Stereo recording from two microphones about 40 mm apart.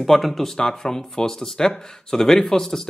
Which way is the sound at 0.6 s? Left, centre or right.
Centre.